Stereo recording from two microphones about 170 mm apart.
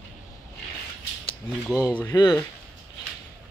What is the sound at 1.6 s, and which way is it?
Speech, 5° left (ahead or behind).